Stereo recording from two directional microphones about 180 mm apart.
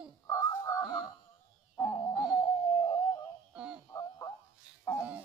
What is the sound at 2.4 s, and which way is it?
Music, 15° left (ahead or behind).